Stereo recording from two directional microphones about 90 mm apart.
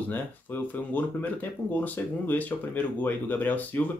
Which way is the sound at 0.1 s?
20° left (ahead or behind).